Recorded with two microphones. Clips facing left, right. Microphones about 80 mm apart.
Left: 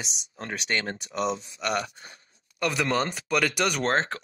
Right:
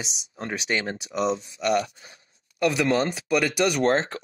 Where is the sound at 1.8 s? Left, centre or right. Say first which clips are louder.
Right 4 dB; left.